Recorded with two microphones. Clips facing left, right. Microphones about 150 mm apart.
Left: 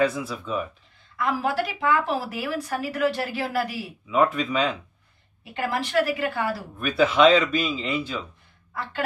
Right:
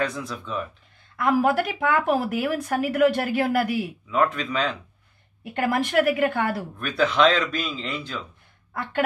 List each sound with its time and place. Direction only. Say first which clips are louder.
0.0 s a man's voice: left 4 dB; 5° left (ahead or behind)
1.2 s speech: right 4 dB; 50° right (ahead or behind)
4.1 s a man's voice: left 2 dB; 5° left (ahead or behind)
5.5 s speech: right 3 dB; 50° right (ahead or behind)
6.8 s a man's voice: left 2 dB; 5° left (ahead or behind)